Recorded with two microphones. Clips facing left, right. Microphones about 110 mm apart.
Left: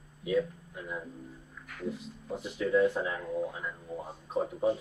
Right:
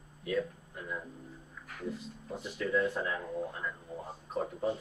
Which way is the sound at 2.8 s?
Centre (ahead or behind).